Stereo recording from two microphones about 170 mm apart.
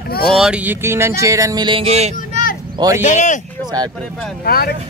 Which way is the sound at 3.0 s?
45° left (ahead or behind).